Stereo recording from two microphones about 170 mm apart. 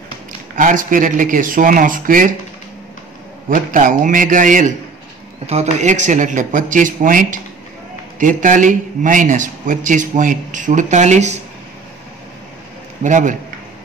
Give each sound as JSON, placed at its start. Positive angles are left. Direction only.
{"t": 0.6, "sound": "speech", "side_deg": -50}
{"t": 3.4, "sound": "speech", "side_deg": -50}
{"t": 13.0, "sound": "speech", "side_deg": -50}